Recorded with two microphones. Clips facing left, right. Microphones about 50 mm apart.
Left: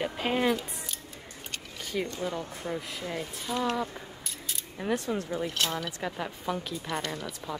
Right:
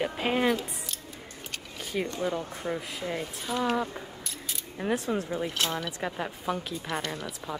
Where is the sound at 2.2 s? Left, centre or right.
Centre.